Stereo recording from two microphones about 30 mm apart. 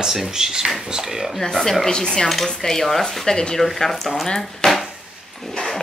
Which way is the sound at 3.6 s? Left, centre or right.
Centre.